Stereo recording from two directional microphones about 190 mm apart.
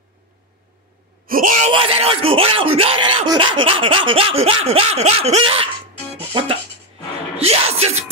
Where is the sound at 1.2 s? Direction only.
45° right (ahead or behind).